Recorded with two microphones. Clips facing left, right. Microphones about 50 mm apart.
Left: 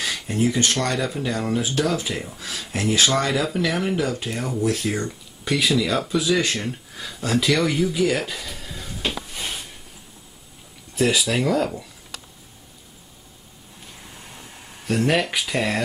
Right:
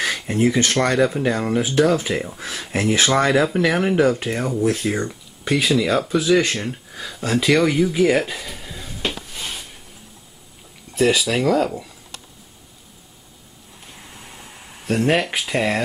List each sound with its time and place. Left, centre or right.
0.0 s speech: right
6.5 s speech: centre
7.9 s speech: right
8.2 s a sound: centre
11.0 s speech: centre
14.9 s speech: centre